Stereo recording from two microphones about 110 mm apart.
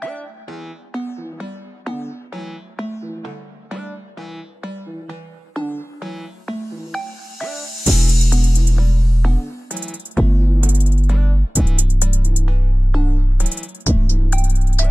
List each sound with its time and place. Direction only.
0.0 s music: 5° left (ahead or behind)
0.9 s music: 20° left (ahead or behind)
2.3 s music: centre (ahead or behind)
2.9 s music: 25° left (ahead or behind)
3.7 s music: centre (ahead or behind)
5.5 s music: 15° left (ahead or behind)
5.9 s music: centre (ahead or behind)
10.2 s music: 25° left (ahead or behind)
10.6 s music: 15° right (ahead or behind)
12.9 s music: 20° left (ahead or behind)
13.4 s music: 15° right (ahead or behind)
13.8 s music: 15° left (ahead or behind)